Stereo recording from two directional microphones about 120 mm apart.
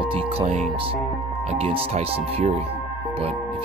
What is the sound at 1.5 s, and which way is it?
Speech, 60° right (ahead or behind).